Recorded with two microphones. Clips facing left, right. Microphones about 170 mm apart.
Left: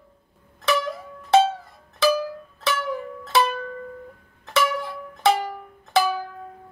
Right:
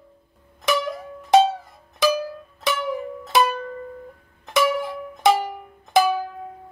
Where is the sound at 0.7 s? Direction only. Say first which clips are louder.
Right 1 dB; 15° right (ahead or behind).